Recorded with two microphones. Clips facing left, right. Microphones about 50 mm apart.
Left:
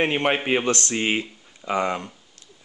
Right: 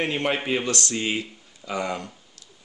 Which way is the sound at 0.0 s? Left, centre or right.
Left.